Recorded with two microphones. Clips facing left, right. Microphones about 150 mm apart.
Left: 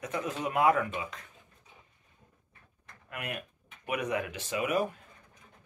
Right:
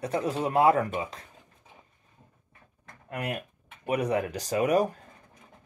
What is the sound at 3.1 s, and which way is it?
Speech, 35° right (ahead or behind).